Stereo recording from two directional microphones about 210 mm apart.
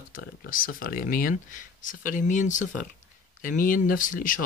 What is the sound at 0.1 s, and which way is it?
Speech, 40° left (ahead or behind).